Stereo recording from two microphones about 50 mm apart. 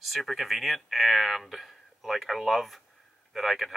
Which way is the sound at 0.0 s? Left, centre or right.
Centre.